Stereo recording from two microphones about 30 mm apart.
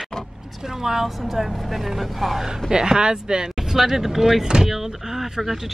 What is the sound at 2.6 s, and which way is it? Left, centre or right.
Speech, right.